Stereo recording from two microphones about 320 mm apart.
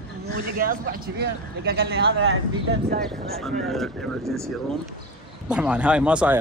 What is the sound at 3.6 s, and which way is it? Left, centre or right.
Speech, centre.